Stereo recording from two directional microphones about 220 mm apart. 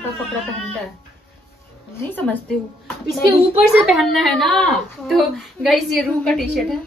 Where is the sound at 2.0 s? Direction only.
10° left (ahead or behind).